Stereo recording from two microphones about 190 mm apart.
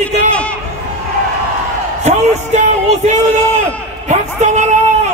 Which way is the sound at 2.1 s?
40° right (ahead or behind).